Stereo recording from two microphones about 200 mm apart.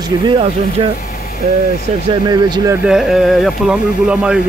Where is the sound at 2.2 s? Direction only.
20° right (ahead or behind).